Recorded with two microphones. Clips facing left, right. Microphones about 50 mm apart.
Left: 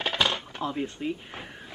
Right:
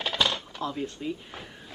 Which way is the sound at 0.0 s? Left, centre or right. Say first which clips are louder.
Left 1 dB; left.